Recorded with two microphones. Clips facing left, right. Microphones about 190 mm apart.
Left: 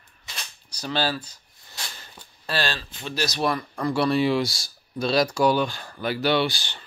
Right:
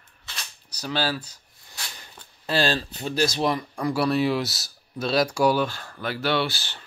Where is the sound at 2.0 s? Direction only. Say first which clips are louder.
Even; 20° right (ahead or behind).